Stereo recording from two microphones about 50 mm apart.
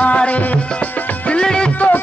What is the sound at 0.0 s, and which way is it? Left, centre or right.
Music, left.